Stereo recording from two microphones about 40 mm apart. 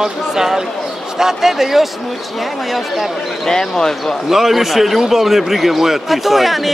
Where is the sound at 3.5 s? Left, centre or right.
Centre.